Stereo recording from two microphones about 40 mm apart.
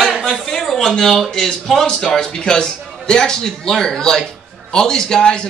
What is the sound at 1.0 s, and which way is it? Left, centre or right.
Speech, centre.